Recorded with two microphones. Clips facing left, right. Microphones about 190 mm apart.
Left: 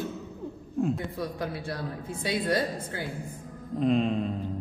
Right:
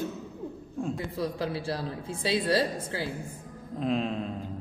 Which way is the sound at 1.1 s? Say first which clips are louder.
Right 2 dB; 30° right (ahead or behind).